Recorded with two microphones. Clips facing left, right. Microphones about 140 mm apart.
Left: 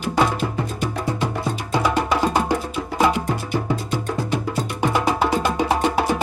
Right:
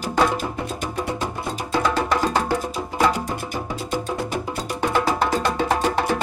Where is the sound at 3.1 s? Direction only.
45° right (ahead or behind).